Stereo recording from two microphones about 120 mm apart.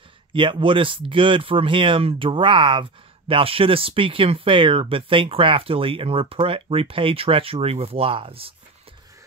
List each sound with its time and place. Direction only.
0.3 s speech: 45° right (ahead or behind)